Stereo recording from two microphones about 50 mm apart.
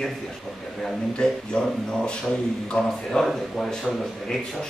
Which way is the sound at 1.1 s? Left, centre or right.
Centre.